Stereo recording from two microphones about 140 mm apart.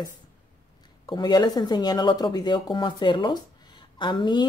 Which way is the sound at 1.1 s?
30° left (ahead or behind).